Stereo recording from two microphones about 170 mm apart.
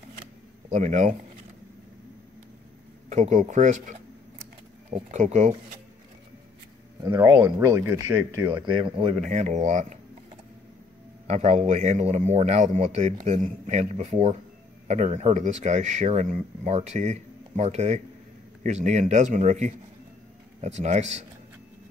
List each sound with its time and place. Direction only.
0.7 s speech: 45° right (ahead or behind)
3.1 s speech: 45° right (ahead or behind)
7.0 s speech: 20° right (ahead or behind)
8.6 s speech: 30° right (ahead or behind)
9.2 s speech: 45° right (ahead or behind)
11.2 s speech: 40° right (ahead or behind)